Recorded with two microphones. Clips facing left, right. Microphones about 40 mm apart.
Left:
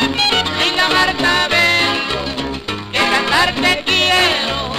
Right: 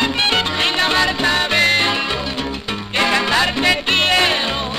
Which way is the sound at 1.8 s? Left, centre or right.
Centre.